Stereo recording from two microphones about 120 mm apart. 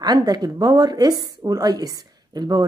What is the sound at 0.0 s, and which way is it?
A woman's voice, 35° right (ahead or behind).